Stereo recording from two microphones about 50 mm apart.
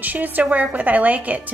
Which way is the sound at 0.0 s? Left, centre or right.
Right.